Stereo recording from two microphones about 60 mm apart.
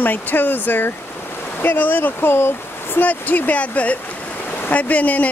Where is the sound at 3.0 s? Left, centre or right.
Left.